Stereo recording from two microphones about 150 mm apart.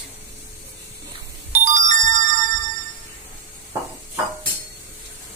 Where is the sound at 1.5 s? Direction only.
55° right (ahead or behind).